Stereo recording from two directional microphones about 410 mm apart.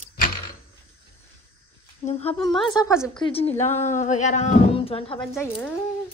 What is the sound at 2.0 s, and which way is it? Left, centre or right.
Speech, centre.